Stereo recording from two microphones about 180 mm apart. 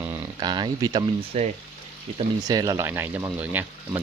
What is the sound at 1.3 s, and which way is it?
Speech, 35° right (ahead or behind).